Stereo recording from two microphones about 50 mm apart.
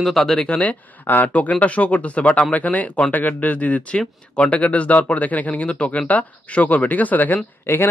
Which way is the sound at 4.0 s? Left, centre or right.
Centre.